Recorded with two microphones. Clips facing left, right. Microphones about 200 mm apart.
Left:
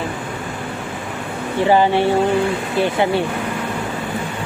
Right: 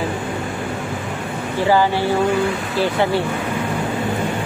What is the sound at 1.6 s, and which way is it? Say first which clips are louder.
Speech: left 2 dB; 20° left (ahead or behind).